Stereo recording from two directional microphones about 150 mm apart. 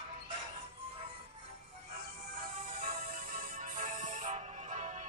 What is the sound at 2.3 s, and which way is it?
Music, 70° right (ahead or behind).